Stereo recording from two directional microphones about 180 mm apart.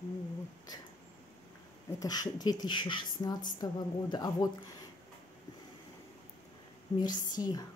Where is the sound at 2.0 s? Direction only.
20° left (ahead or behind).